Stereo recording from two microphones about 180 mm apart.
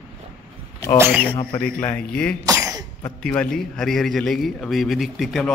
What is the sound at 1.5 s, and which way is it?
Speech, 5° left (ahead or behind).